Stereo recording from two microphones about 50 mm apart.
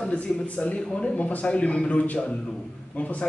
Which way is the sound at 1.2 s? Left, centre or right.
Left.